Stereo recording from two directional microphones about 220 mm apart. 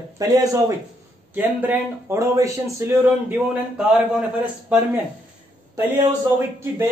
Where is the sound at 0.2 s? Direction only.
15° right (ahead or behind).